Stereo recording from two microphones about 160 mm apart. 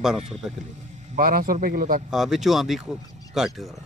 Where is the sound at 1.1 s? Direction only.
60° right (ahead or behind).